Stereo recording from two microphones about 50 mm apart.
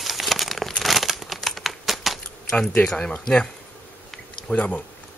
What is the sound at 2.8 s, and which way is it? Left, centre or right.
Speech, centre.